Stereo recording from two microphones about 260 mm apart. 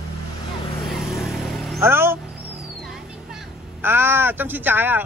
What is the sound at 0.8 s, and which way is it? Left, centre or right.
Vehicle, centre.